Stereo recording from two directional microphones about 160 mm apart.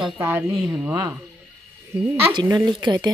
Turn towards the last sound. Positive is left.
turn(degrees=-25)  # may be behind; listen again after turning